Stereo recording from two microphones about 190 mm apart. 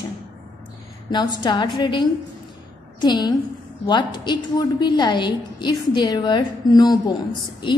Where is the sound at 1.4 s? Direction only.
25° left (ahead or behind).